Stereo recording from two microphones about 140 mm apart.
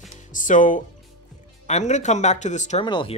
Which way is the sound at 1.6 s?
55° left (ahead or behind).